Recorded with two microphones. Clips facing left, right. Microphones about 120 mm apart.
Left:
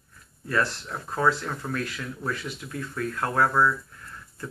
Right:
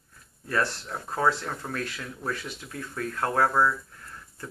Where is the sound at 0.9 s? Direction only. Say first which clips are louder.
Left 1 dB; 30° right (ahead or behind).